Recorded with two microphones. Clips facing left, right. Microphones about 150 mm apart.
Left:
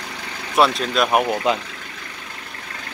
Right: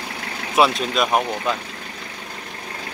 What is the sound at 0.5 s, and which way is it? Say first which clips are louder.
Speech: even; centre (ahead or behind).